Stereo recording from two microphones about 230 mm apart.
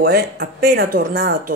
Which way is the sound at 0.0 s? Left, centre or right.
Right.